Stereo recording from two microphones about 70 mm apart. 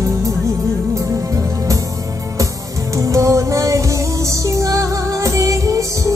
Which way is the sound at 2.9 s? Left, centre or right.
Right.